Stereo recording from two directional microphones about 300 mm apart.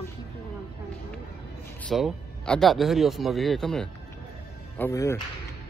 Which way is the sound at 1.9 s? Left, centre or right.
Centre.